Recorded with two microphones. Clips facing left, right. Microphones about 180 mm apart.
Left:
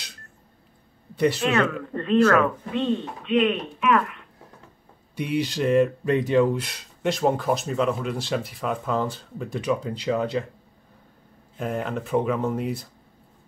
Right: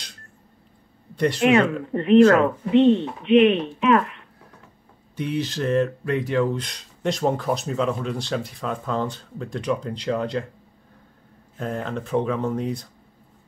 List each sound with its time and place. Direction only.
1.1 s speech: 5° left (ahead or behind)
1.4 s speech: 20° right (ahead or behind)
5.1 s speech: 15° left (ahead or behind)
6.6 s speech: 5° left (ahead or behind)
11.5 s speech: 5° left (ahead or behind)